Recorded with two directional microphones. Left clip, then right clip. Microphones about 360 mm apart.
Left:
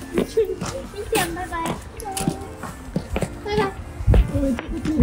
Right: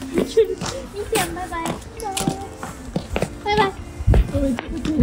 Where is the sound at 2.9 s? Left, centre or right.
Centre.